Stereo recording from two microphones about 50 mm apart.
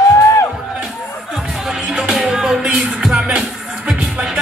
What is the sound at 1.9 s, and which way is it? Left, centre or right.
Music, centre.